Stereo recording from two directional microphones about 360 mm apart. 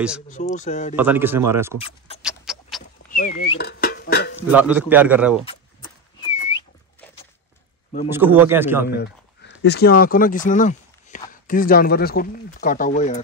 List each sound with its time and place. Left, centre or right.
0.3 s speech: centre
0.9 s a man's voice: centre
2.2 s rodents: centre
3.1 s a sound: left
3.5 s speech: left
4.4 s a man's voice: centre
8.1 s a man's voice: centre
8.8 s a sound: left
9.6 s speech: left